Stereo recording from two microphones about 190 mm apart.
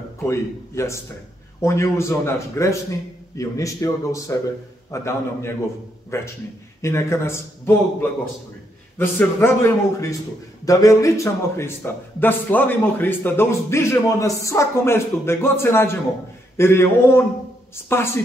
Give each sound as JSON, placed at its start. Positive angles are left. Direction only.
{"t": 0.3, "sound": "a man's voice", "side_deg": 15}